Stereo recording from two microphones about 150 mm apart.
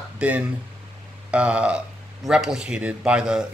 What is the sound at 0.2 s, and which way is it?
Speech, 10° right (ahead or behind).